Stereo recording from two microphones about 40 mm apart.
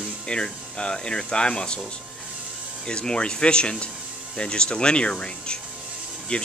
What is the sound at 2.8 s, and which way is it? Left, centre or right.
Speech, left.